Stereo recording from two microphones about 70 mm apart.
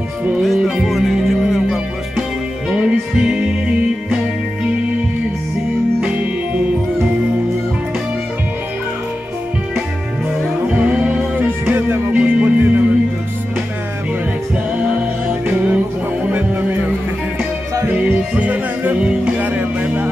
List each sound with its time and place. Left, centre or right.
0.4 s music: centre
5.9 s music: centre
10.7 s music: centre
11.4 s music: right
14.8 s music: centre
17.9 s music: centre